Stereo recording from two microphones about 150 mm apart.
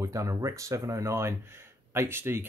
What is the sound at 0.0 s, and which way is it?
Speech, 20° right (ahead or behind).